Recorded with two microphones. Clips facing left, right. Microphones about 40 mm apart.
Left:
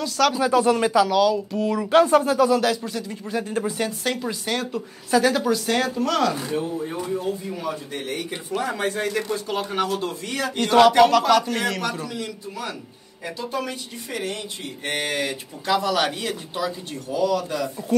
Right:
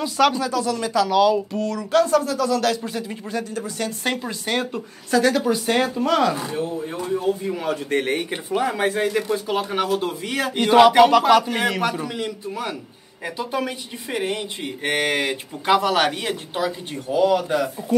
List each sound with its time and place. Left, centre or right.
0.5 s speech: left
1.1 s speech: centre
1.6 s speech: centre
2.6 s a woman's voice: centre
2.9 s speech: centre
3.4 s speech: left
4.0 s speech: centre
5.1 s a woman's voice: centre
5.4 s speech: centre
7.6 s speech: right
8.5 s speech: centre; by 16.1 s right
16.1 s speech: right